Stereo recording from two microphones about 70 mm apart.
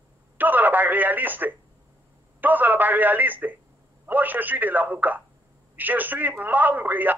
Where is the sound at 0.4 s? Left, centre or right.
Right.